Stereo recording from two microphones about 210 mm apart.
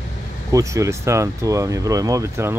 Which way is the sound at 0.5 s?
15° right (ahead or behind).